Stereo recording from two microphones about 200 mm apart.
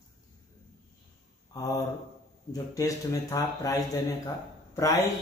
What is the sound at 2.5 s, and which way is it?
Speech, 15° left (ahead or behind).